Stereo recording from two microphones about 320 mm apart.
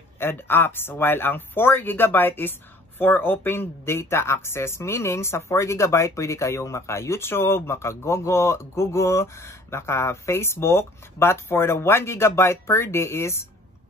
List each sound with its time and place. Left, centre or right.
0.2 s speech: centre